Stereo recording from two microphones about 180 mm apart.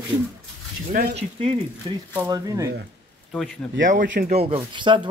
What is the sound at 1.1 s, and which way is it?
Speech, 30° right (ahead or behind).